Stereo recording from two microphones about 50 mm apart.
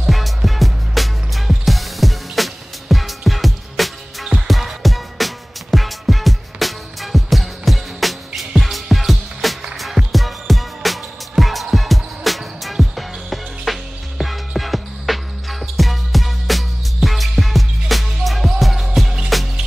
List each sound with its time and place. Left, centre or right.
0.0 s music: centre